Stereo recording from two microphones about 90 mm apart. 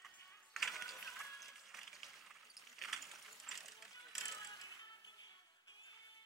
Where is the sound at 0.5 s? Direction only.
Centre (ahead or behind).